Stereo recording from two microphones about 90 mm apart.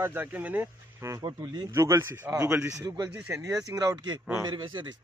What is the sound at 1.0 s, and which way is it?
Speech, 40° right (ahead or behind).